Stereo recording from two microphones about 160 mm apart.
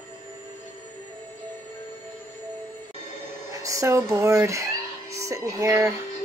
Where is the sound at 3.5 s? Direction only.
20° right (ahead or behind).